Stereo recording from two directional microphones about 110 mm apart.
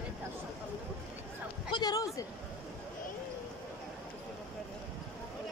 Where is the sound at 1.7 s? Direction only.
40° left (ahead or behind).